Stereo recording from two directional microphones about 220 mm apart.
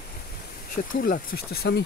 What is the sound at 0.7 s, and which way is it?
Speech, 40° left (ahead or behind).